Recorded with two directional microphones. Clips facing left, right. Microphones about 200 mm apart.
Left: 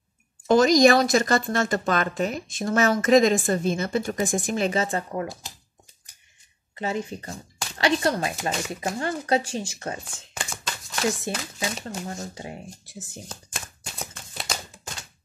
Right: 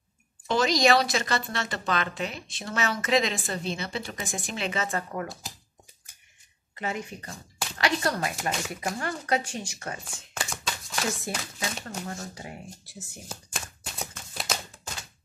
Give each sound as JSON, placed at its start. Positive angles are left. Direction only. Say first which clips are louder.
{"t": 0.5, "sound": "speech", "louder": "left 6 dB", "side_deg": 45}
{"t": 4.8, "sound": "speech", "louder": "left 4 dB", "side_deg": 25}
{"t": 6.7, "sound": "speech", "louder": "left 5 dB", "side_deg": 30}
{"t": 10.0, "sound": "a sound", "louder": "even", "side_deg": 0}
{"t": 11.3, "sound": "speech", "louder": "left 4 dB", "side_deg": 25}
{"t": 13.5, "sound": "a sound", "louder": "even", "side_deg": 0}